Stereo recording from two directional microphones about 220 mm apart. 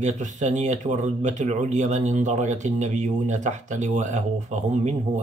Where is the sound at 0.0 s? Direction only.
35° right (ahead or behind).